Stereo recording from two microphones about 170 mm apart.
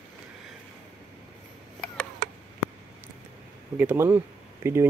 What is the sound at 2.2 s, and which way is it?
Tick, 55° right (ahead or behind).